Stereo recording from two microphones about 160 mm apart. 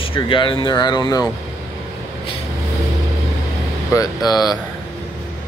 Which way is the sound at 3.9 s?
25° left (ahead or behind).